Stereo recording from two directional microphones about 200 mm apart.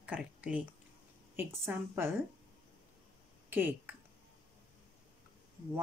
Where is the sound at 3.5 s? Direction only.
10° right (ahead or behind).